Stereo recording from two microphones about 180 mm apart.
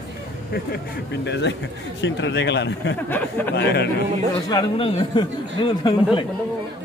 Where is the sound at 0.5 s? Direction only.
65° left (ahead or behind).